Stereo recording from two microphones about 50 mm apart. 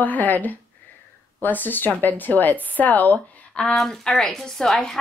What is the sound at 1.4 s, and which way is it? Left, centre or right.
Speech, left.